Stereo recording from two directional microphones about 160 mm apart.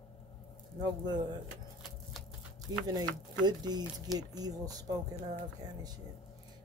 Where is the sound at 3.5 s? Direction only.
25° right (ahead or behind).